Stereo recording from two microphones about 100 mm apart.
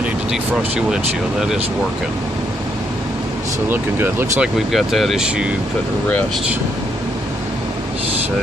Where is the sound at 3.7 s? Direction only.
20° right (ahead or behind).